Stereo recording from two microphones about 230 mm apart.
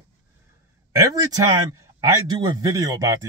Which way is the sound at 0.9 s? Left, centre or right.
Centre.